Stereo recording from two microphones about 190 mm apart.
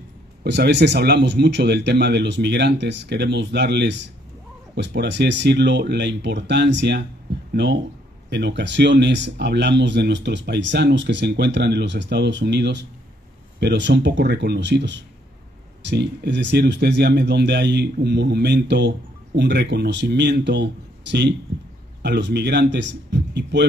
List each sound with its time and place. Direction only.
0.4 s speech: 65° right (ahead or behind)